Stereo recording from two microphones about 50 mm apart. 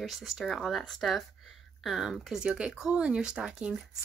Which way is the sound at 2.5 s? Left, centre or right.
Right.